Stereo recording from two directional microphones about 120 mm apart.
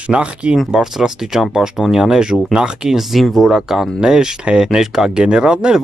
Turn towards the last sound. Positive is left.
turn(degrees=-5)  # may be behind; listen again after turning